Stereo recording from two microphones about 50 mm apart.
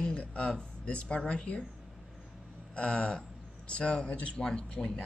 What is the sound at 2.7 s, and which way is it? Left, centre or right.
A woman's voice, left.